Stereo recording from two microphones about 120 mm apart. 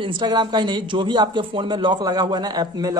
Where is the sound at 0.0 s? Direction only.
40° right (ahead or behind).